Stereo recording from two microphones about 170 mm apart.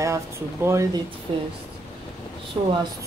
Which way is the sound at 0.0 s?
15° right (ahead or behind).